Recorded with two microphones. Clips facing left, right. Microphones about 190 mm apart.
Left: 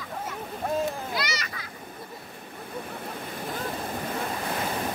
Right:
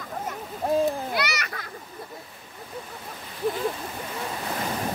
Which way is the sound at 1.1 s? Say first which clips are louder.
Right 3 dB; 65° right (ahead or behind).